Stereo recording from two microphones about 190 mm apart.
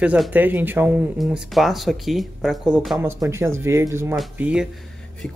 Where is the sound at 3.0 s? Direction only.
15° right (ahead or behind).